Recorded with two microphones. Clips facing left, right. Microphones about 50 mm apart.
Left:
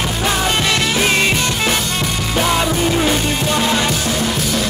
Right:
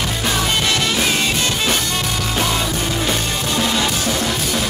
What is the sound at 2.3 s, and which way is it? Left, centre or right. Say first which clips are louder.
Music: left 5 dB; left.